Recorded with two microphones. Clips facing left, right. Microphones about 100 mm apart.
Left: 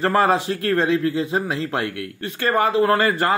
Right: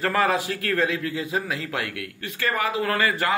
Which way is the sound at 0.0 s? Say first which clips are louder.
Left 4 dB; 30° left (ahead or behind).